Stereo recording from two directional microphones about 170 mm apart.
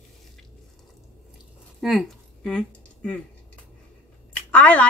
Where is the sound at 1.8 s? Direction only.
Centre (ahead or behind).